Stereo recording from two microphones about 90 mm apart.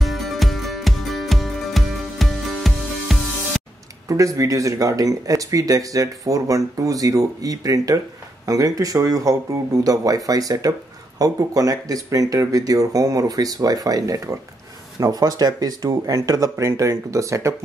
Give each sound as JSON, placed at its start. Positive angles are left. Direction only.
{"t": 0.0, "sound": "music", "side_deg": 0}
{"t": 4.1, "sound": "speech", "side_deg": -40}